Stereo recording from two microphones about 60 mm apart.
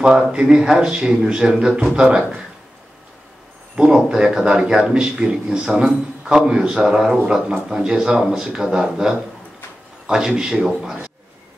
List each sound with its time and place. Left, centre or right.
0.3 s a man's voice: centre
3.7 s a man's voice: centre